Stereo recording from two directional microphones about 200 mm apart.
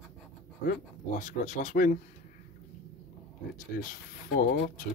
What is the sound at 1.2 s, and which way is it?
Speech, 40° left (ahead or behind).